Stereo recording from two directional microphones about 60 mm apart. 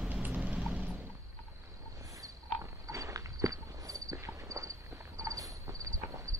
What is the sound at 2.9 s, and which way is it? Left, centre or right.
Walk, right.